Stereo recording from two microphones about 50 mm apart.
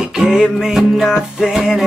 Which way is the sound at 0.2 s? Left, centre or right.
Centre.